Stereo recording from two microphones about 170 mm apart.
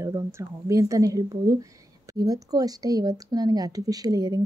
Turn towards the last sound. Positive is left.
turn(degrees=-20)  # may be behind; listen again after turning